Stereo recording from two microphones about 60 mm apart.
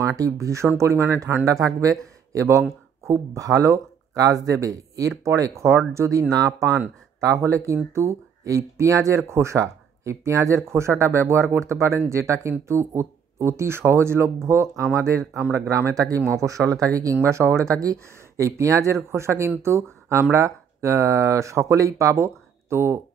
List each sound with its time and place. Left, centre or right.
0.0 s speech: right
1.4 s speech: right
3.1 s speech: right
6.3 s speech: right
7.2 s speech: right
15.7 s speech: right
16.8 s speech: right
17.2 s speech: right